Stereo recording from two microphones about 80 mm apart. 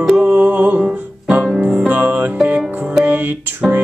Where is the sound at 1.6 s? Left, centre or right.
Centre.